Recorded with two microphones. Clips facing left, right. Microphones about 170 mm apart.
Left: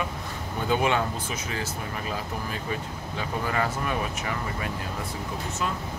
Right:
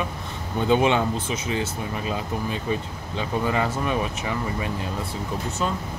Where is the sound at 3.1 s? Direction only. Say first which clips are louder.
Right 4 dB; 25° right (ahead or behind).